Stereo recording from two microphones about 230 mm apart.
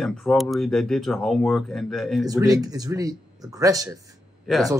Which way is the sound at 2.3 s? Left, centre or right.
Centre.